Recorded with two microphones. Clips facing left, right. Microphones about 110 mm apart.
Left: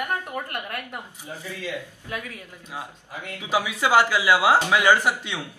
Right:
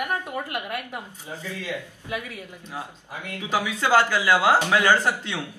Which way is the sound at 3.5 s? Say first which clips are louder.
Left 1 dB; 15° left (ahead or behind).